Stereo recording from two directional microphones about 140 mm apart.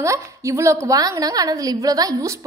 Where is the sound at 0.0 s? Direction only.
20° right (ahead or behind).